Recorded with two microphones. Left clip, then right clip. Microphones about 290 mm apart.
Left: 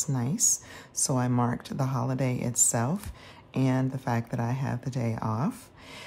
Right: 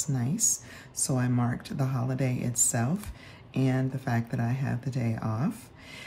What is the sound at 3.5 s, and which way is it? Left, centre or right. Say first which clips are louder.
Speech: left 1 dB; centre.